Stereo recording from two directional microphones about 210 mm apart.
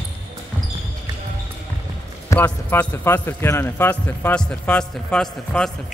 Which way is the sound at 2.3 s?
10° left (ahead or behind).